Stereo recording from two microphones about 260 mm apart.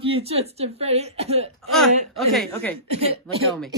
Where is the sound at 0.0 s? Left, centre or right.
Right.